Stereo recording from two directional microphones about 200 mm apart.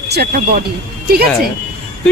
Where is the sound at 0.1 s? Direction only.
55° right (ahead or behind).